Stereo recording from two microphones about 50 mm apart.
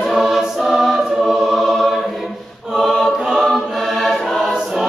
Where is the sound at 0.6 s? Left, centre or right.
Centre.